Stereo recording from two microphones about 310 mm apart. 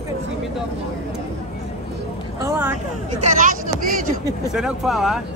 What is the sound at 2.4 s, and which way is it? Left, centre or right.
Speech, centre.